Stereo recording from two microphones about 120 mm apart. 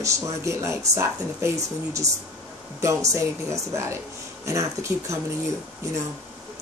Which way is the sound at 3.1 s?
25° right (ahead or behind).